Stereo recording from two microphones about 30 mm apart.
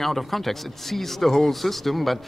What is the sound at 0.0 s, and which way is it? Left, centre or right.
Speech, centre.